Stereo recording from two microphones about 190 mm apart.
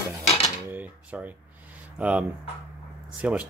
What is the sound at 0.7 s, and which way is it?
Speech, 10° right (ahead or behind).